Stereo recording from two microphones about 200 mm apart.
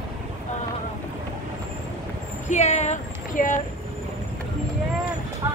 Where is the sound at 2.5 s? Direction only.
35° left (ahead or behind).